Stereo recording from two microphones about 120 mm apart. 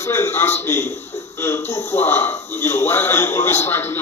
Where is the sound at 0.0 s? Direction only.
20° left (ahead or behind).